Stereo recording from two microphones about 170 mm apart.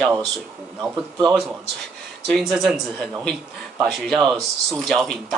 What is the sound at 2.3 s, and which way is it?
Speech, centre (ahead or behind).